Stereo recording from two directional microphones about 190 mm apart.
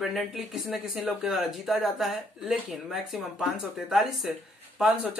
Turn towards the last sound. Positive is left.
turn(degrees=-5)  # may be behind; listen again after turning